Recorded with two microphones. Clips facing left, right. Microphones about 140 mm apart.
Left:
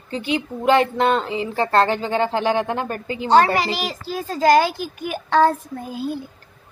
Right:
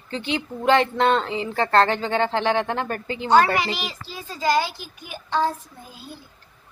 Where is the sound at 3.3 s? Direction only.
35° left (ahead or behind); by 6.2 s 60° left (ahead or behind).